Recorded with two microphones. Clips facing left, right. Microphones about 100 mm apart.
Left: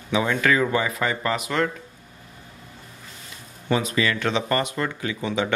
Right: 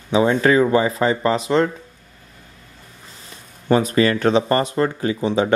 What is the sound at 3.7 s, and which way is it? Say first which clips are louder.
Speech: right 7 dB; 45° right (ahead or behind).